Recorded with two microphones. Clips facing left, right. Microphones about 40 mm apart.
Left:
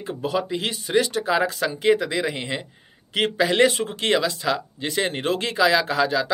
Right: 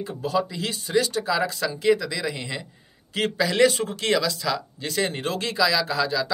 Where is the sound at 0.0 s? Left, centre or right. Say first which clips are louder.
Even; left.